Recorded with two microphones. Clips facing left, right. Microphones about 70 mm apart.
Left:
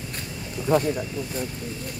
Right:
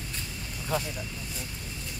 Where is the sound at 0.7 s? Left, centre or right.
Left.